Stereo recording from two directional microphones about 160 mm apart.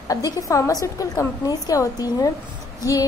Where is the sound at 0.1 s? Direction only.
20° left (ahead or behind).